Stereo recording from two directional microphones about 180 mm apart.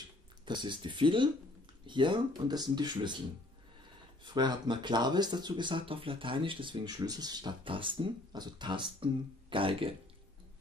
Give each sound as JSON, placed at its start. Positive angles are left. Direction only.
{"t": 0.5, "sound": "speech", "side_deg": -25}
{"t": 4.2, "sound": "speech", "side_deg": -25}